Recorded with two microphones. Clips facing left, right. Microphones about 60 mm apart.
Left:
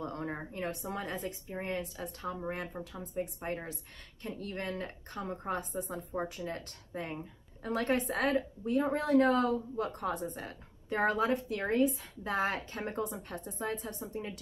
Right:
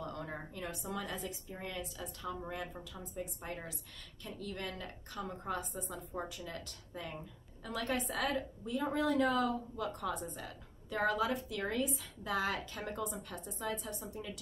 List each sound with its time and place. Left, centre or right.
0.0 s a sound: left
0.5 s a woman's voice: left
5.6 s a woman's voice: left